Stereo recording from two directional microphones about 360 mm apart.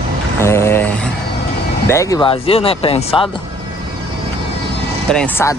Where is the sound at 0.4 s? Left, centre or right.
Centre.